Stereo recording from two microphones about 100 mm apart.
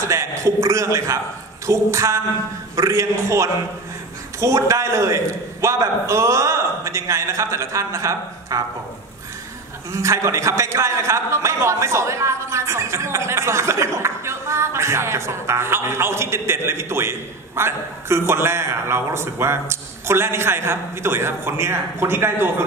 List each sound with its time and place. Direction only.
0.0 s a man's voice: 30° right (ahead or behind)
9.9 s a man's voice: 30° right (ahead or behind)